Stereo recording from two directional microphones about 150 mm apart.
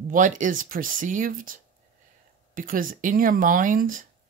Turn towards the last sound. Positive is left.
turn(degrees=-65)  # may be behind; listen again after turning